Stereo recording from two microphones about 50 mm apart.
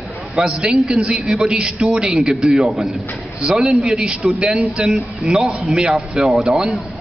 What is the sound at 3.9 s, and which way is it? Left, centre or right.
A woman's voice, centre.